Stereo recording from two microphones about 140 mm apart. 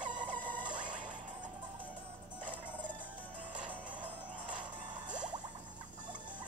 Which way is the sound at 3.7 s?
10° right (ahead or behind).